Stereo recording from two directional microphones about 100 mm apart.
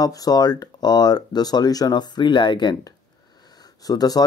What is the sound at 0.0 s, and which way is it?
Speech, 40° left (ahead or behind).